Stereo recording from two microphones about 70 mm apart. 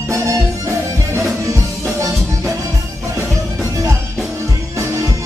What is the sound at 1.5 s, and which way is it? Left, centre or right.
Music, right.